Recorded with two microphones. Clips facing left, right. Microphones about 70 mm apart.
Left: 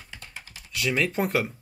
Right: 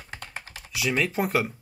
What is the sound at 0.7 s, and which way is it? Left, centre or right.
Speech, centre.